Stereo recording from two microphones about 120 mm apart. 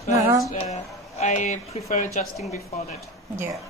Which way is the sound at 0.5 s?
65° left (ahead or behind).